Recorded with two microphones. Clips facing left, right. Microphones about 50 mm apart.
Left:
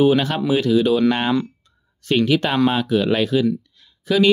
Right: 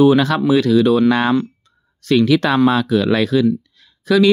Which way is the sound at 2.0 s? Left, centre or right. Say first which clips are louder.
Right 4 dB; right.